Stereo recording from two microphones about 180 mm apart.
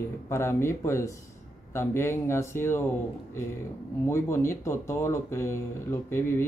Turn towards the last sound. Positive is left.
turn(degrees=15)  # may be behind; listen again after turning